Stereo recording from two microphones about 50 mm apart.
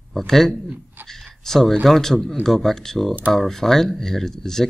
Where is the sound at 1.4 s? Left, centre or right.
Centre.